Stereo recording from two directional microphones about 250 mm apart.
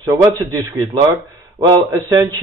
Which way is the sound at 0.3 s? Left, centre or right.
Centre.